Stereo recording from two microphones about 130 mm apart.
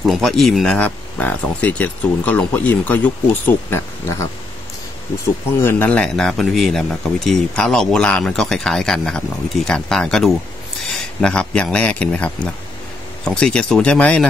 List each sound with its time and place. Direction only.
0.0 s speech: centre (ahead or behind)
0.7 s speech: 15° left (ahead or behind)
5.2 s speech: 15° left (ahead or behind)